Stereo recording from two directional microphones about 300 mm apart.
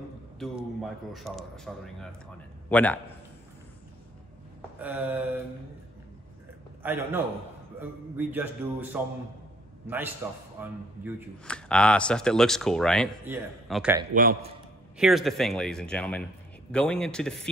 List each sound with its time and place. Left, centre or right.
0.4 s speech: centre
4.6 s a sound: centre
6.8 s a man's voice: centre
10.2 s a man's voice: centre
11.4 s speech: centre
14.1 s a man's voice: right
15.0 s speech: centre